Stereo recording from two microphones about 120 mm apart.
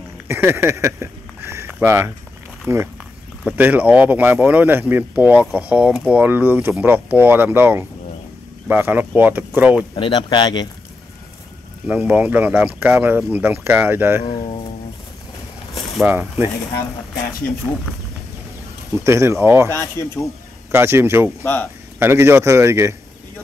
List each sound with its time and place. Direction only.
0.3 s speech: 20° right (ahead or behind)
3.4 s speech: 10° right (ahead or behind)
9.9 s speech: 40° left (ahead or behind)
11.9 s speech: 10° right (ahead or behind)
16.1 s speech: 20° right (ahead or behind)
19.0 s speech: 20° right (ahead or behind)
19.7 s speech: 20° left (ahead or behind)
20.7 s speech: 20° right (ahead or behind)
21.4 s speech: 20° left (ahead or behind)
22.0 s speech: 20° right (ahead or behind)